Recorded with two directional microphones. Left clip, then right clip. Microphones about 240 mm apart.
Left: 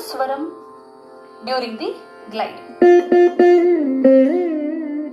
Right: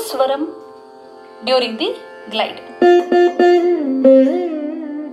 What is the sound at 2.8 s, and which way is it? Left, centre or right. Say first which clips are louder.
Music: even; left.